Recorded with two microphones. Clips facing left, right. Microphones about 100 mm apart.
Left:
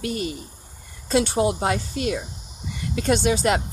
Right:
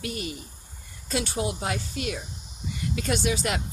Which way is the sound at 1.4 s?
40° left (ahead or behind).